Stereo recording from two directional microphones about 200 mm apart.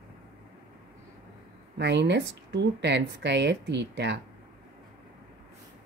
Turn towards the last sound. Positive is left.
turn(degrees=-60)  # may be behind; listen again after turning